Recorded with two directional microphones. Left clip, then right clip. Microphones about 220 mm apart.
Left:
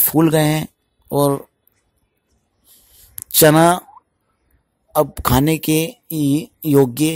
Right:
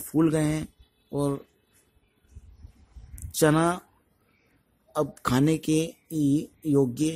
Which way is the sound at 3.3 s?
40° left (ahead or behind).